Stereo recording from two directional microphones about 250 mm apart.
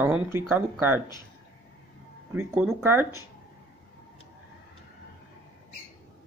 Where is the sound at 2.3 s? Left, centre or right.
Centre.